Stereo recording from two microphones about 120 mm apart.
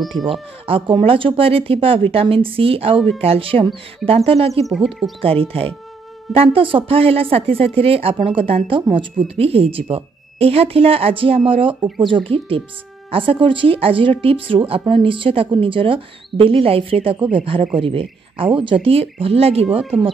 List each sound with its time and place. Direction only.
0.0 s speech: centre (ahead or behind)
0.3 s speech: 50° right (ahead or behind)
4.7 s speech: 5° right (ahead or behind)
5.2 s speech: 50° right (ahead or behind)